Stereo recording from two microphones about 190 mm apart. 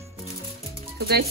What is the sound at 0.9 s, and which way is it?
Music, 55° right (ahead or behind).